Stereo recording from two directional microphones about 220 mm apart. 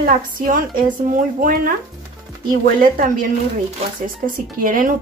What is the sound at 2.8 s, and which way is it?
Speech, 40° right (ahead or behind).